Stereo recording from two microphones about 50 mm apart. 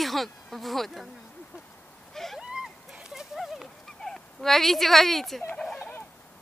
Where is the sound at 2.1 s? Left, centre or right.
Centre.